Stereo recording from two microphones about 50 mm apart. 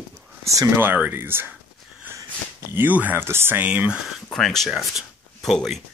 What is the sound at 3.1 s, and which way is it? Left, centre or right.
Speech, right.